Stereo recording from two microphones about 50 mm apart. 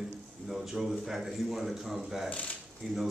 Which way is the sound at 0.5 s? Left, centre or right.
Centre.